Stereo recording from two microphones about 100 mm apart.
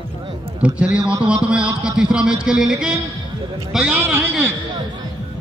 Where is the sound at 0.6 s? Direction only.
10° right (ahead or behind).